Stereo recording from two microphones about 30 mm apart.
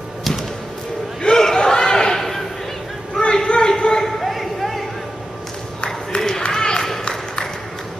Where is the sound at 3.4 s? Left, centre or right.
Left.